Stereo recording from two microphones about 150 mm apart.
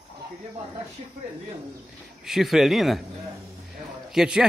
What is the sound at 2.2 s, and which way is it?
Speech, centre (ahead or behind).